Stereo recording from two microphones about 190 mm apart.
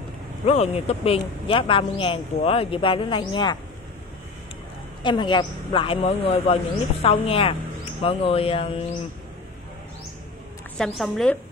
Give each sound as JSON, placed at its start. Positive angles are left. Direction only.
{"t": 0.5, "sound": "speech", "side_deg": 35}
{"t": 5.0, "sound": "speech", "side_deg": 25}
{"t": 10.8, "sound": "a woman's voice", "side_deg": 0}